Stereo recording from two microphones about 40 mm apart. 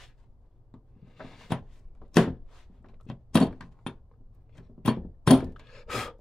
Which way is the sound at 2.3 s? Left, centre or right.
Centre.